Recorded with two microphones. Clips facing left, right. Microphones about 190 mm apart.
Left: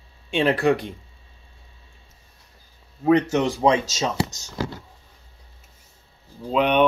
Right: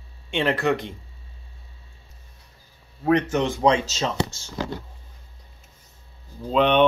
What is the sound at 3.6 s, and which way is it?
Speech, 20° left (ahead or behind).